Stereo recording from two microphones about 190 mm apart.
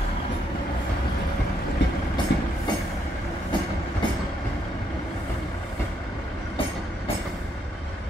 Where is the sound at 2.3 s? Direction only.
65° left (ahead or behind).